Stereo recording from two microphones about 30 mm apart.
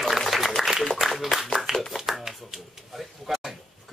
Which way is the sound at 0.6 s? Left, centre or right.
Centre.